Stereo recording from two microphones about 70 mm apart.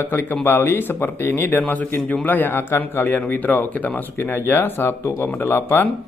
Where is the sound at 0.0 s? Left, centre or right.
Left.